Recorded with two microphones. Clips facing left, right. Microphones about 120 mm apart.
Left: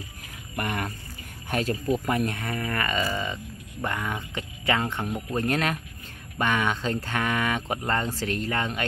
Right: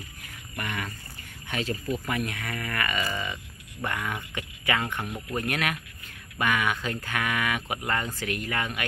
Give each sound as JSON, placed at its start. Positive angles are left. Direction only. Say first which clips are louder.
{"t": 0.6, "sound": "speech", "louder": "left 4 dB", "side_deg": 40}